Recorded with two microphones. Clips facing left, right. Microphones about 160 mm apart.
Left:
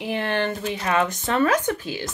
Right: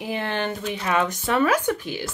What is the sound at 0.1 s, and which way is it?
Speech, 15° right (ahead or behind).